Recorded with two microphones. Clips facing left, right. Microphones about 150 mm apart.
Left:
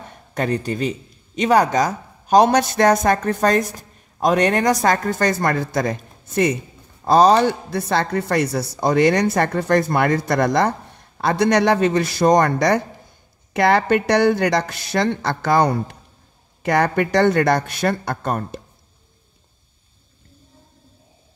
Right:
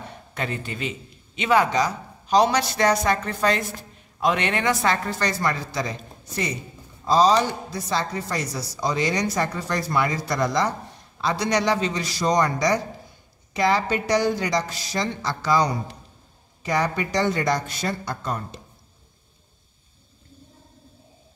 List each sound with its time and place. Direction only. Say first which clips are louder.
0.3 s speech: left 8 dB; 45° left (ahead or behind)